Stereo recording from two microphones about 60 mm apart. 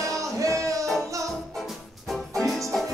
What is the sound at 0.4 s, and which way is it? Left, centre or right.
Music, right.